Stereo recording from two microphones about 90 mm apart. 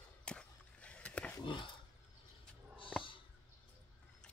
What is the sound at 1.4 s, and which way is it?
Speech, 65° left (ahead or behind).